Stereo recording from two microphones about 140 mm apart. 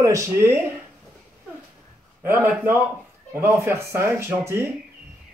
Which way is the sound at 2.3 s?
15° right (ahead or behind).